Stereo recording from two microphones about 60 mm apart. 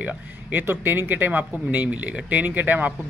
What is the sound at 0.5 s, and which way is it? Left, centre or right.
Speech, right.